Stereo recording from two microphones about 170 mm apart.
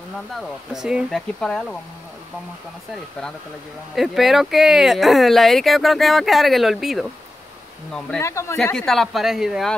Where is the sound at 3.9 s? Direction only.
Centre (ahead or behind).